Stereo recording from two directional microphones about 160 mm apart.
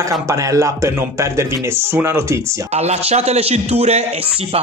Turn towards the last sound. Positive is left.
turn(degrees=-45)  # may be behind; listen again after turning